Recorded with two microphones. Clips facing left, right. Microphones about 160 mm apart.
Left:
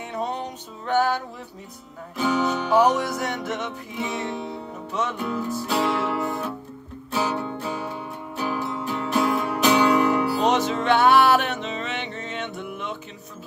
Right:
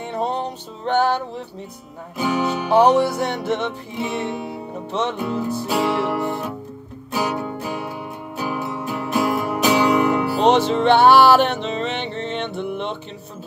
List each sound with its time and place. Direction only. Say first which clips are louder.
0.0 s music: right 5 dB; 30° right (ahead or behind)
2.1 s music: right 1 dB; 10° right (ahead or behind)
2.7 s music: right 6 dB; 30° right (ahead or behind)
5.3 s music: right 4 dB; 25° right (ahead or behind)
5.7 s music: right 3 dB; 10° right (ahead or behind)
10.4 s music: right 6 dB; 30° right (ahead or behind)